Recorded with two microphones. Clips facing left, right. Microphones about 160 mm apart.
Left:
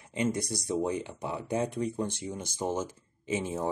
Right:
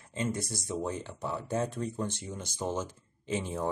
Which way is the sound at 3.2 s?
10° left (ahead or behind).